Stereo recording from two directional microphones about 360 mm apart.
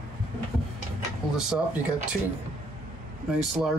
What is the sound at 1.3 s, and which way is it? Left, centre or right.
Speech, centre.